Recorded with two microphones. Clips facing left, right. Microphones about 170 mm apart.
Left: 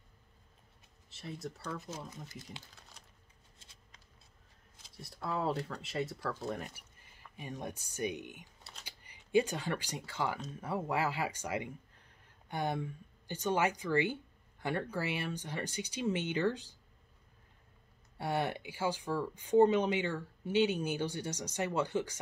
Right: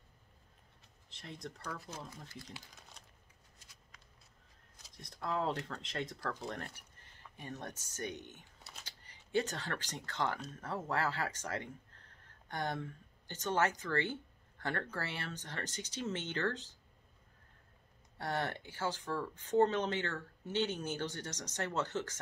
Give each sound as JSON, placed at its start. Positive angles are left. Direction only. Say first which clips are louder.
{"t": 1.1, "sound": "speech", "louder": "left 4 dB", "side_deg": 5}
{"t": 1.7, "sound": "speech", "louder": "left 2 dB", "side_deg": 20}
{"t": 3.5, "sound": "a sound", "louder": "even", "side_deg": 25}
{"t": 4.9, "sound": "speech", "louder": "even", "side_deg": 5}
{"t": 18.1, "sound": "speech", "louder": "left 3 dB", "side_deg": 10}